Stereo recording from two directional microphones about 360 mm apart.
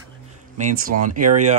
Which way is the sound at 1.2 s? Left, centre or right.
Centre.